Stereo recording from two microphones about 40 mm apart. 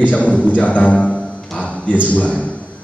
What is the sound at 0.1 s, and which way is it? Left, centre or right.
A man's voice, left.